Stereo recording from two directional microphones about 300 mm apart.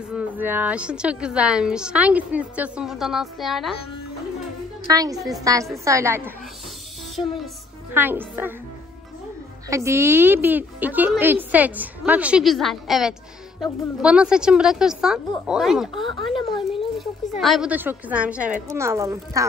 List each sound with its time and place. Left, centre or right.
0.1 s a woman's voice: centre
4.9 s speech: centre
7.9 s speech: centre
9.7 s a woman's voice: centre
15.9 s speech: centre
17.4 s a woman's voice: centre